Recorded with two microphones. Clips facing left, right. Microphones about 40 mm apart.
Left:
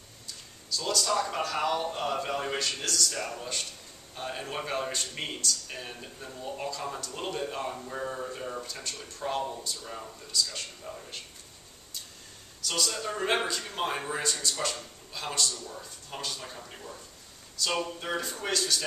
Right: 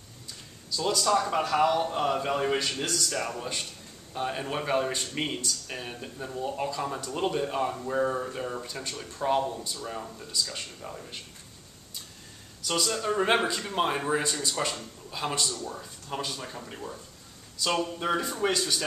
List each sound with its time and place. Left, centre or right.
0.7 s a man's voice: centre
12.6 s a man's voice: centre
15.5 s speech: right
16.1 s a man's voice: centre